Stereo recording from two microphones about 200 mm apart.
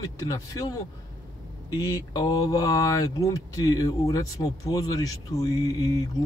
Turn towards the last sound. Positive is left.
turn(degrees=15)  # may be behind; listen again after turning